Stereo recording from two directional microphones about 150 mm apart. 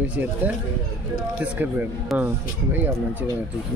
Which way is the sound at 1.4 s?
10° right (ahead or behind).